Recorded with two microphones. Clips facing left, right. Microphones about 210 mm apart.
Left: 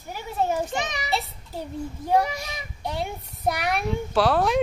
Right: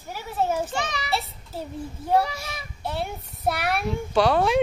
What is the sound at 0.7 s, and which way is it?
A child's voice, 20° left (ahead or behind).